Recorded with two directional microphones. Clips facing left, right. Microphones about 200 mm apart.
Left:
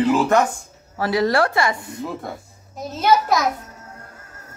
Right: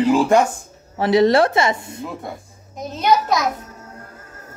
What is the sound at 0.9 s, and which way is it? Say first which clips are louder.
A child's voice: right 5 dB; 25° right (ahead or behind).